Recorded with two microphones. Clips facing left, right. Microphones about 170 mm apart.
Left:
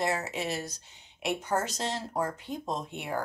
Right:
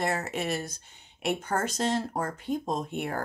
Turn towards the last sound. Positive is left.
turn(degrees=-50)  # may be behind; listen again after turning